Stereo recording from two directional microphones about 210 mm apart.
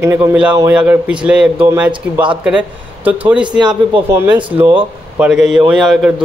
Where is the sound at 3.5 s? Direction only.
20° right (ahead or behind).